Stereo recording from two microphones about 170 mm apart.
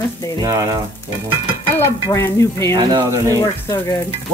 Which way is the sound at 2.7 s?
20° right (ahead or behind).